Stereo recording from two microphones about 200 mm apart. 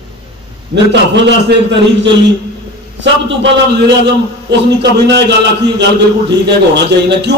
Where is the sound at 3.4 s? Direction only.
60° right (ahead or behind).